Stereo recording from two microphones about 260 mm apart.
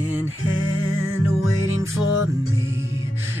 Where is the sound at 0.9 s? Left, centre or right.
Left.